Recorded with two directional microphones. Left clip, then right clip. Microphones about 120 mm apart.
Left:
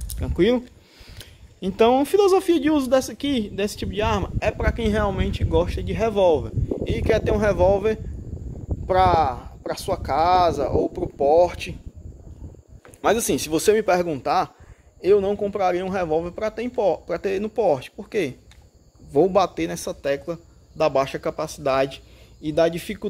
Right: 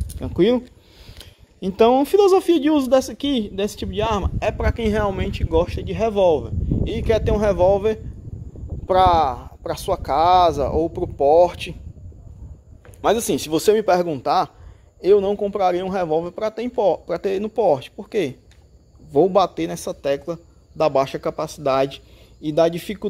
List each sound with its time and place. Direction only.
0.2 s speech: 25° right (ahead or behind)
4.4 s speech: 45° right (ahead or behind); by 8.0 s 25° right (ahead or behind)
8.8 s speech: 50° right (ahead or behind)
13.0 s a man's voice: 25° right (ahead or behind); by 23.0 s 40° right (ahead or behind)